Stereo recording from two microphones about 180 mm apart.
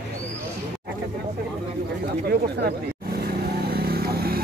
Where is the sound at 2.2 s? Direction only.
65° right (ahead or behind).